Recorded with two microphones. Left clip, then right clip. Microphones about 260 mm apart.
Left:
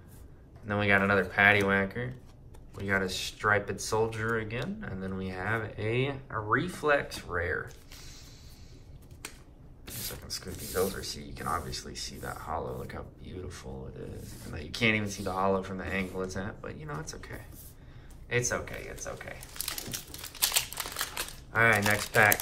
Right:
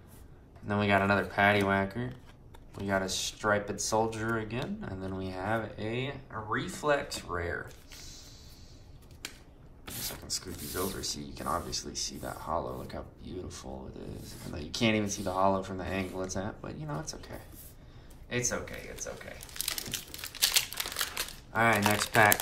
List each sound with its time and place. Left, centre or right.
0.7 s speech: centre
9.8 s speech: centre
19.5 s crumpling: centre
21.5 s speech: centre